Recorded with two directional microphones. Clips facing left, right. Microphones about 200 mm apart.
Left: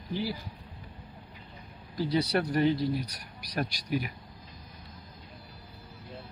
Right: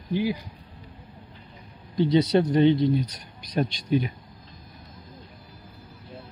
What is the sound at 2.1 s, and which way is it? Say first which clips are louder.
Speech: right 7 dB; 20° right (ahead or behind).